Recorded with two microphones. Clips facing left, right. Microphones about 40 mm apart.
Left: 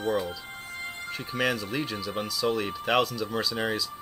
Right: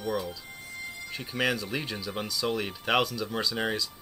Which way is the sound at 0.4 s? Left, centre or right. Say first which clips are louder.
Left 3 dB; left.